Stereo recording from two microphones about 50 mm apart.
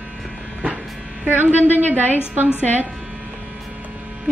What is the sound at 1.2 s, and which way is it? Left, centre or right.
Speech, right.